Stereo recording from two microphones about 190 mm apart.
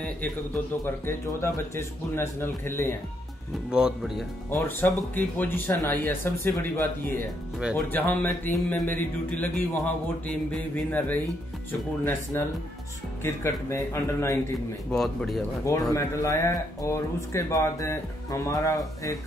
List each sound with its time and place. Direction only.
0.8 s a man's voice: 10° left (ahead or behind)
3.7 s speech: 5° right (ahead or behind)
4.5 s a man's voice: 10° left (ahead or behind)
14.9 s speech: 5° left (ahead or behind)
15.9 s a man's voice: 15° left (ahead or behind)